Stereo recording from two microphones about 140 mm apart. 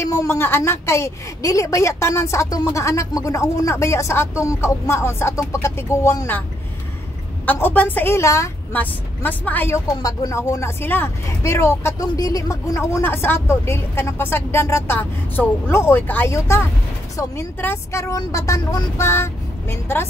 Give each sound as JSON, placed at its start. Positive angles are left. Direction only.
{"t": 0.0, "sound": "speech", "side_deg": 20}
{"t": 7.4, "sound": "a woman's voice", "side_deg": 15}
{"t": 10.0, "sound": "speech", "side_deg": 25}